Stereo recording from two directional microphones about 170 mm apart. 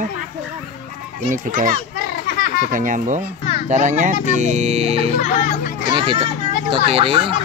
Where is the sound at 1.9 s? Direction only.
60° left (ahead or behind).